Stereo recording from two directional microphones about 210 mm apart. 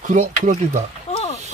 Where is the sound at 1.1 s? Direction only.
30° left (ahead or behind).